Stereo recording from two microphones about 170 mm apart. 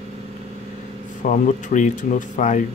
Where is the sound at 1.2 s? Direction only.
50° left (ahead or behind).